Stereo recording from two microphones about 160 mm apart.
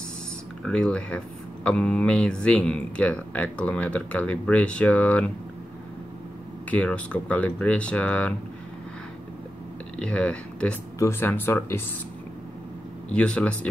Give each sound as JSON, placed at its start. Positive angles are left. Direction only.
{"t": 0.7, "sound": "speech", "side_deg": 5}
{"t": 6.7, "sound": "speech", "side_deg": 10}
{"t": 9.9, "sound": "speech", "side_deg": 5}
{"t": 13.1, "sound": "speech", "side_deg": 5}